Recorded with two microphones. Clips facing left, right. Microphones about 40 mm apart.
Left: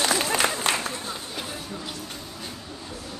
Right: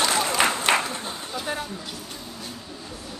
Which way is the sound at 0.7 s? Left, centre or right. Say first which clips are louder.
Right 4 dB; right.